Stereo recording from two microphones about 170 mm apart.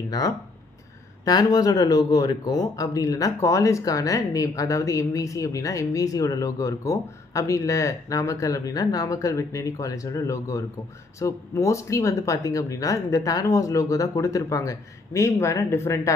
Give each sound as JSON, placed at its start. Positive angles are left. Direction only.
{"t": 1.2, "sound": "speech", "side_deg": 20}